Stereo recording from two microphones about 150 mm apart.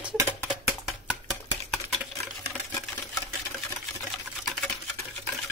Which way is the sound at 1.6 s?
5° left (ahead or behind).